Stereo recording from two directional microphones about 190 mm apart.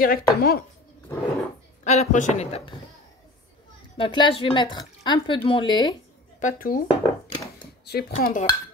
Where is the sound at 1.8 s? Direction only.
35° left (ahead or behind).